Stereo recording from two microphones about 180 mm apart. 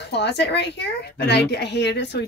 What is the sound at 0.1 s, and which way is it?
Speech, 70° left (ahead or behind).